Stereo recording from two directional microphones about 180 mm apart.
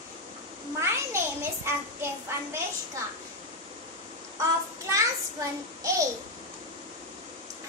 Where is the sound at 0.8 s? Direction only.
15° right (ahead or behind).